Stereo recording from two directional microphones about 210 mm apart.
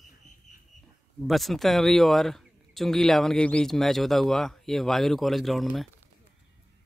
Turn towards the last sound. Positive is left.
turn(degrees=0)  # may be behind; listen again after turning